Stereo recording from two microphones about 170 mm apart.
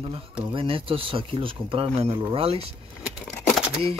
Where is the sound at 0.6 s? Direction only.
30° right (ahead or behind).